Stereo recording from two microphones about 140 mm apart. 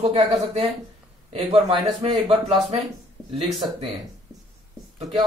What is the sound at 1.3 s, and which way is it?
A man's voice, 40° right (ahead or behind).